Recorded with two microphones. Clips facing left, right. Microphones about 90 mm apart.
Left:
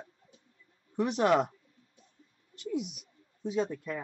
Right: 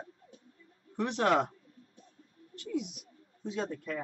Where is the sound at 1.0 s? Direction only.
15° left (ahead or behind).